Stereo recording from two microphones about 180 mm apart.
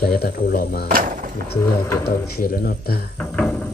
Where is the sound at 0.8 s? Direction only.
50° right (ahead or behind).